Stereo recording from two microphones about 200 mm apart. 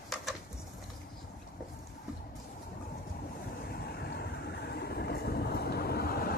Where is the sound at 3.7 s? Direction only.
50° left (ahead or behind).